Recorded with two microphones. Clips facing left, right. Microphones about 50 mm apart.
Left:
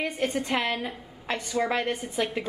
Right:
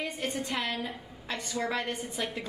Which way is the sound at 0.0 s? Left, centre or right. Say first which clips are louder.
Left 5 dB; left.